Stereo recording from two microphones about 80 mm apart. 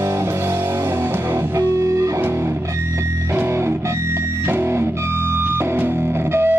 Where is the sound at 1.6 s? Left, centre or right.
Right.